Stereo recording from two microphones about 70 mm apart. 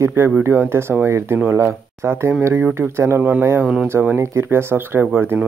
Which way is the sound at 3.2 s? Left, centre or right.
Right.